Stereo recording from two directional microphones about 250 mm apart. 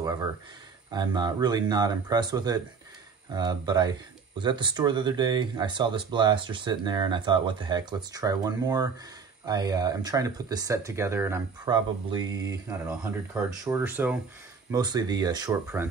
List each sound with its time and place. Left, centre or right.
0.9 s speech: centre